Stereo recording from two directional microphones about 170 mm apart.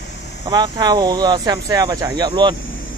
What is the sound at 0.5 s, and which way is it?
Speech, 25° right (ahead or behind).